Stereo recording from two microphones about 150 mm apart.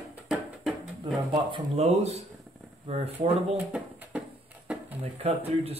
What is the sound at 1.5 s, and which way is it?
Speech, 45° right (ahead or behind).